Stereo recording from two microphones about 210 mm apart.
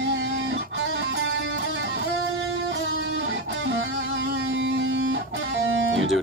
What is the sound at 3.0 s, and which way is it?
Music, 65° right (ahead or behind).